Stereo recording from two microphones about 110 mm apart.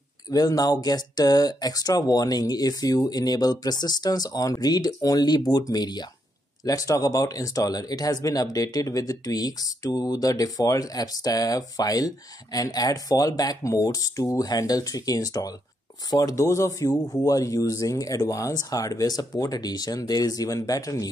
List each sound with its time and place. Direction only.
0.3 s speech: 35° left (ahead or behind)